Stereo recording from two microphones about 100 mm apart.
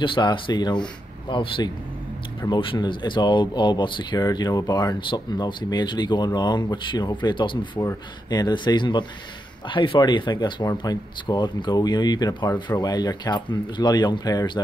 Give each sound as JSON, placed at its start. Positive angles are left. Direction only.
{"t": 0.0, "sound": "speech", "side_deg": 55}